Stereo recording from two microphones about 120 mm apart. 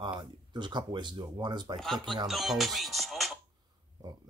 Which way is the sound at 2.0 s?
40° right (ahead or behind).